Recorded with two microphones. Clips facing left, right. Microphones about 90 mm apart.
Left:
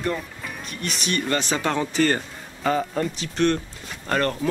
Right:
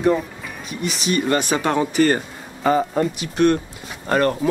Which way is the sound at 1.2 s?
15° right (ahead or behind).